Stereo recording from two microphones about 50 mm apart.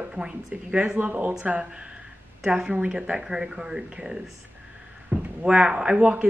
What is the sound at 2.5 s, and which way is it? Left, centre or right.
A woman's voice, right.